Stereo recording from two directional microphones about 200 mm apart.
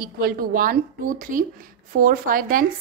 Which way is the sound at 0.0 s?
45° right (ahead or behind).